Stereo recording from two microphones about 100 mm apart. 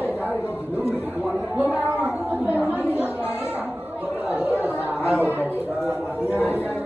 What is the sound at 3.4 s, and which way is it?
Chatter, 20° right (ahead or behind).